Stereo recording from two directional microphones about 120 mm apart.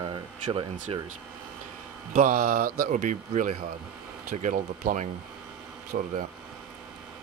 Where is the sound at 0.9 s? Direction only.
50° right (ahead or behind).